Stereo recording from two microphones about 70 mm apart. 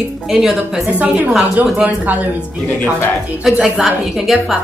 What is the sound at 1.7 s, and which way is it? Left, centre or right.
Speech, right.